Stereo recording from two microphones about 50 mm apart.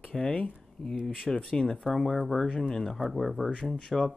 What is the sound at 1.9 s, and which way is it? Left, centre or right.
Speech, centre.